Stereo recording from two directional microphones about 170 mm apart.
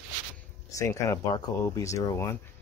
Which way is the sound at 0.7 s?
20° left (ahead or behind).